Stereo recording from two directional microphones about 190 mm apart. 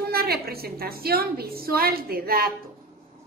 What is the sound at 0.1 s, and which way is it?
A woman's voice, 55° right (ahead or behind).